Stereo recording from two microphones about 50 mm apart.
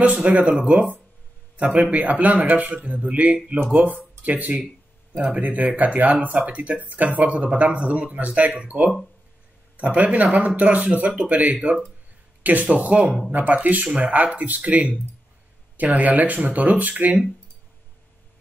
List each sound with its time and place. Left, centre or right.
0.0 s a man's voice: right